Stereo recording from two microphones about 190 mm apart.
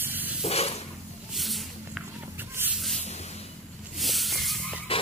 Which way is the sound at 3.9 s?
Centre (ahead or behind).